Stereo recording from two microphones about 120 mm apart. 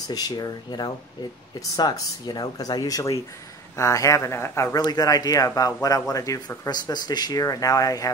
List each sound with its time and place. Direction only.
0.1 s speech: 35° left (ahead or behind)
4.7 s speech: 30° left (ahead or behind)